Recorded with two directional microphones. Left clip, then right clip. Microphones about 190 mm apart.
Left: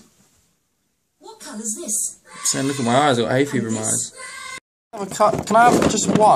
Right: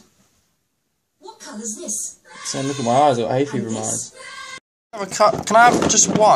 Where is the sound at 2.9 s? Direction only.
35° left (ahead or behind).